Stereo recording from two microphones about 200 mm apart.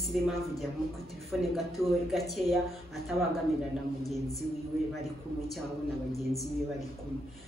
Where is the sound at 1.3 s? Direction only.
5° right (ahead or behind).